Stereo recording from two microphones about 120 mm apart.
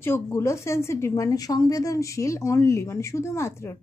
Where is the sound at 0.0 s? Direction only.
20° left (ahead or behind).